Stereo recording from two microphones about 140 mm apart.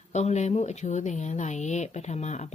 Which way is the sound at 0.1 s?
55° left (ahead or behind).